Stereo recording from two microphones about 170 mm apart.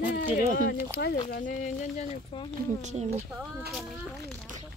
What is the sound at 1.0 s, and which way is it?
Speech, 75° left (ahead or behind).